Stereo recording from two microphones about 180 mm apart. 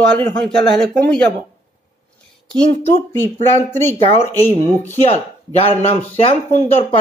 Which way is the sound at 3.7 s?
10° left (ahead or behind).